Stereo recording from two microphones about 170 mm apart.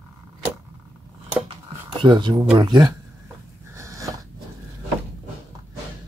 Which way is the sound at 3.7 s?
20° right (ahead or behind).